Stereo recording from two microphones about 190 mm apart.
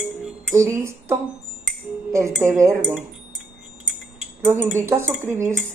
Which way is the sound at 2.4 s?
15° right (ahead or behind).